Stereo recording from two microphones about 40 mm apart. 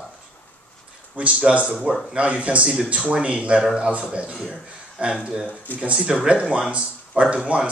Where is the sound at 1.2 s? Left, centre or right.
Right.